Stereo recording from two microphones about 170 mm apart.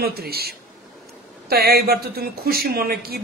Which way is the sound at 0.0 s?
65° right (ahead or behind).